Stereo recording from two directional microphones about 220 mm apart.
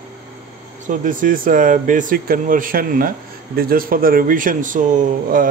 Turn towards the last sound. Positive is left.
turn(degrees=-35)  # may be behind; listen again after turning